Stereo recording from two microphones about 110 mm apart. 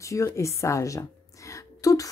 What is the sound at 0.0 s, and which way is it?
A woman's voice, 25° left (ahead or behind).